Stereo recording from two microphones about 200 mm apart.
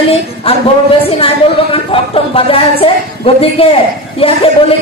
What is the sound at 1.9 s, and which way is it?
Speech, 25° left (ahead or behind).